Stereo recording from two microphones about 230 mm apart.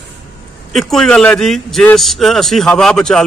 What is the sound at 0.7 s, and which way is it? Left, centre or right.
A man's voice, centre.